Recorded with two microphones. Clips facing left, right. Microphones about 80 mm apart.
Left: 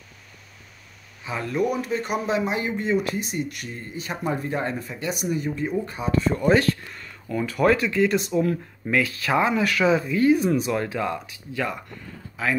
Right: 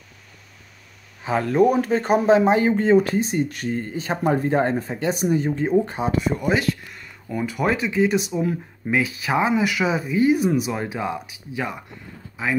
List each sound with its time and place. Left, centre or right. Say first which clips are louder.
1.4 s speech: right 6 dB; right
6.1 s speech: left 4 dB; centre